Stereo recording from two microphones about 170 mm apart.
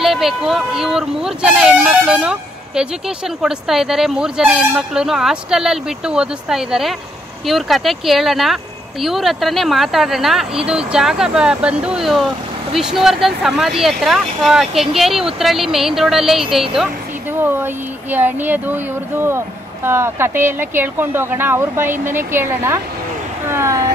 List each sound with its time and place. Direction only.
0.0 s speech: centre (ahead or behind)
18.1 s speech: 10° right (ahead or behind)